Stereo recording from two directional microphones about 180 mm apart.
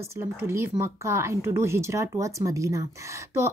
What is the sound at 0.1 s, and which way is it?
Speech, 15° right (ahead or behind).